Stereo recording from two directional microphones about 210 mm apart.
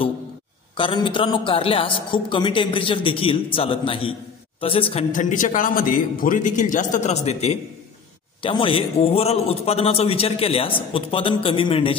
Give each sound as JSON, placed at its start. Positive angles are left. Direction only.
{"t": 0.7, "sound": "a man's voice", "side_deg": 25}
{"t": 5.1, "sound": "a man's voice", "side_deg": 35}